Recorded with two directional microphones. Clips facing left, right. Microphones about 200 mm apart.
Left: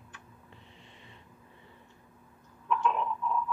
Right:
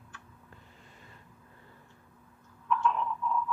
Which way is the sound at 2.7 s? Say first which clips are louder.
Even; 20° left (ahead or behind).